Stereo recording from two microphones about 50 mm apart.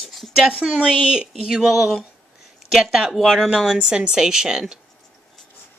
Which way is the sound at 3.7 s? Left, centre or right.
Centre.